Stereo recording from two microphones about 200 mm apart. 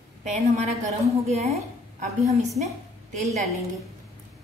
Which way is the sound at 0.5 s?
35° right (ahead or behind).